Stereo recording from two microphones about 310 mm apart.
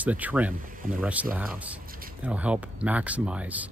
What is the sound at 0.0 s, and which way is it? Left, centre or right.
Speech, centre.